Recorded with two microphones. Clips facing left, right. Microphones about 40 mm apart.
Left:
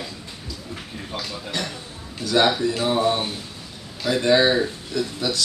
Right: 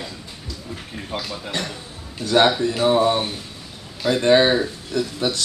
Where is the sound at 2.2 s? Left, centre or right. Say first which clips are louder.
Right 2 dB; right.